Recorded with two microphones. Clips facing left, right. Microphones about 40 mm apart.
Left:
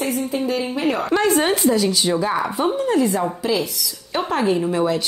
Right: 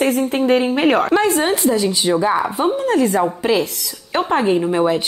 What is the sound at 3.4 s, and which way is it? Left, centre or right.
Speech, right.